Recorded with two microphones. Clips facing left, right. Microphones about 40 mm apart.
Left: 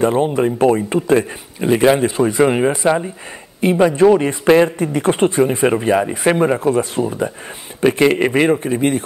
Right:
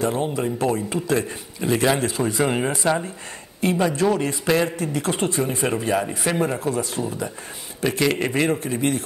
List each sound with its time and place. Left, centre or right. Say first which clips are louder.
0.0 s speech: left 8 dB; left